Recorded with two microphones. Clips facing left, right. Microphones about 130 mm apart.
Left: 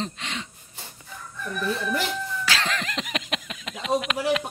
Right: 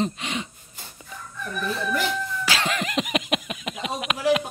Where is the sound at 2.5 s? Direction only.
10° right (ahead or behind).